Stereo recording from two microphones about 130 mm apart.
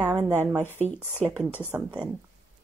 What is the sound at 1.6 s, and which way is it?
Speech, 10° right (ahead or behind).